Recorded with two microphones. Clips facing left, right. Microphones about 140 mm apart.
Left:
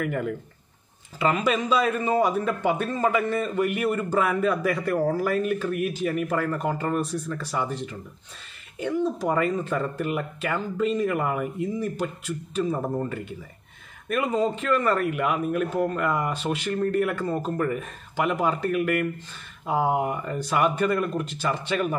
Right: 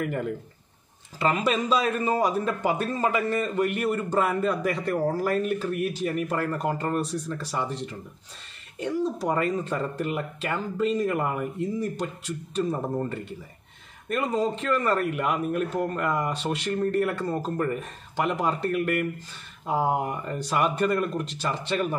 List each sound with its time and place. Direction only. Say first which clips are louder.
0.0 s a man's voice: left 1 dB; centre (ahead or behind)
1.3 s a man's voice: left 1 dB; centre (ahead or behind)
4.7 s speech: left 2 dB; 25° right (ahead or behind)
5.1 s a man's voice: left 1 dB; centre (ahead or behind)